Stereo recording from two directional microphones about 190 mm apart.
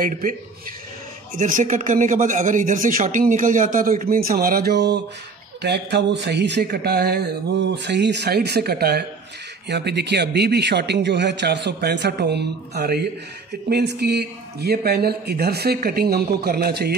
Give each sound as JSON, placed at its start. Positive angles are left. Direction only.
{"t": 0.0, "sound": "speech", "side_deg": -45}
{"t": 1.4, "sound": "speech", "side_deg": -40}